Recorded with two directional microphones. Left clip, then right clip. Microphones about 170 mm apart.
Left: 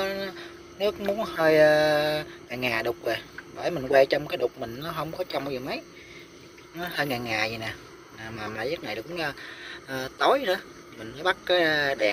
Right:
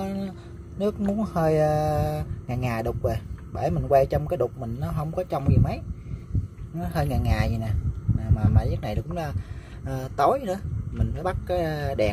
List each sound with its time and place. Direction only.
0.0 s a sound: 10° right (ahead or behind)
0.7 s speech: 15° right (ahead or behind)
6.8 s speech: 10° right (ahead or behind)